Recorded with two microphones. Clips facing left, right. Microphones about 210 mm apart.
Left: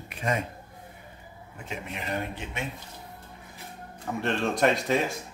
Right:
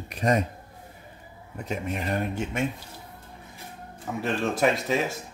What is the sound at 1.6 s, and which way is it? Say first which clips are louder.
Speech: right 6 dB; 40° right (ahead or behind).